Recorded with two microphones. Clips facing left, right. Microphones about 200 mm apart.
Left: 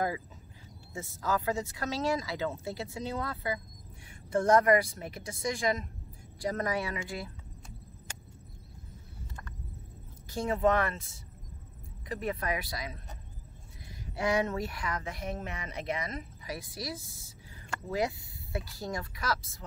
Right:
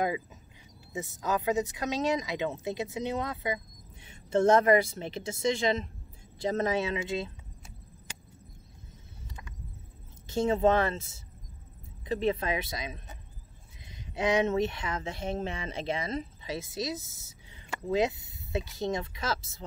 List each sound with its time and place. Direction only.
0.9 s speech: 20° right (ahead or behind)
10.2 s speech: 25° right (ahead or behind)
14.1 s speech: 20° right (ahead or behind)